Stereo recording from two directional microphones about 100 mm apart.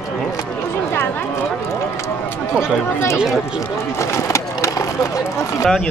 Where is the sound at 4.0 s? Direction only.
30° left (ahead or behind).